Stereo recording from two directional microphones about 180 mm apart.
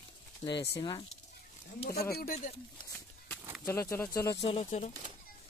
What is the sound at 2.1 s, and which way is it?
Speech, 50° left (ahead or behind).